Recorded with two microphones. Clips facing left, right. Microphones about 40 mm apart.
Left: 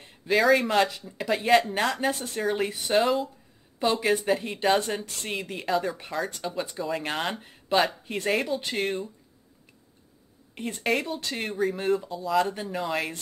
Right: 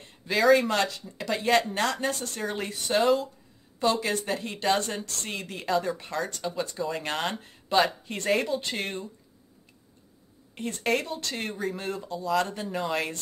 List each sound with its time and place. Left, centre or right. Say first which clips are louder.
0.0 s speech: left 1 dB; centre
6.5 s speech: even; centre
6.8 s speech: left 1 dB; centre
10.8 s speech: left 1 dB; centre